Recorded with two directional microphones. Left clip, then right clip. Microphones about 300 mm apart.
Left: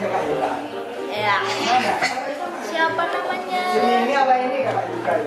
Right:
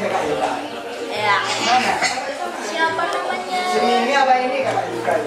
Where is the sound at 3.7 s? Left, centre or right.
Centre.